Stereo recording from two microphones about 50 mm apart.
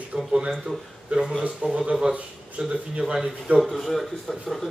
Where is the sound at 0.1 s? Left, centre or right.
Right.